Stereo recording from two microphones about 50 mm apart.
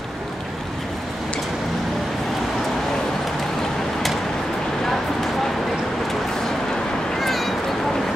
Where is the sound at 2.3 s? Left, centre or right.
Centre.